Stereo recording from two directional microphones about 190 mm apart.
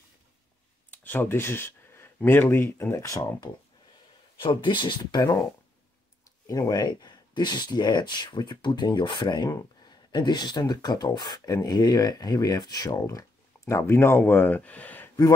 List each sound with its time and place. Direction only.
0.8 s speech: 10° left (ahead or behind)